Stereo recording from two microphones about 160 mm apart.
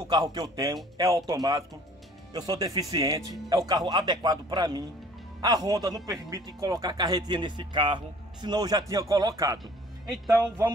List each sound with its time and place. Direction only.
0.1 s speech: 25° right (ahead or behind)